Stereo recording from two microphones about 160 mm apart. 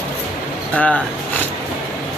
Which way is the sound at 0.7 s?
10° left (ahead or behind).